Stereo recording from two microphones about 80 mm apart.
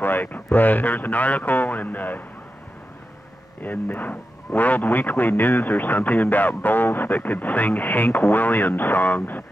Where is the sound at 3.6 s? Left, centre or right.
Left.